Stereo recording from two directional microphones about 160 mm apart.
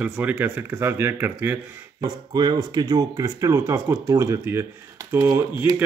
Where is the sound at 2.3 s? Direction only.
25° right (ahead or behind).